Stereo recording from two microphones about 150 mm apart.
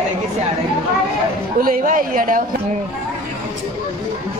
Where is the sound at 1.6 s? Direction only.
70° right (ahead or behind).